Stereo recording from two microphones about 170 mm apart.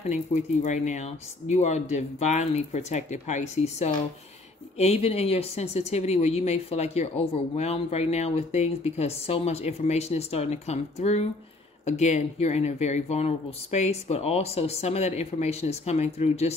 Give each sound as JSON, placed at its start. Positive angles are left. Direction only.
{"t": 0.1, "sound": "a woman's voice", "side_deg": 45}